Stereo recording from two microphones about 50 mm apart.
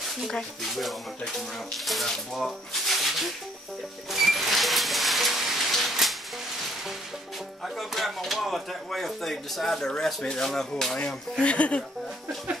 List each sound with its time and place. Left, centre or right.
0.3 s speech: centre
4.1 s a sound: centre
7.6 s speech: centre
11.4 s speech: left